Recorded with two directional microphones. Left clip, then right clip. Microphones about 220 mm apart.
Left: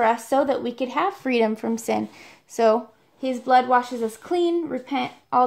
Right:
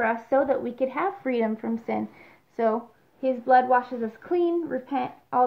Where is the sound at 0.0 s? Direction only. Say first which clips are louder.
Left 3 dB; 45° left (ahead or behind).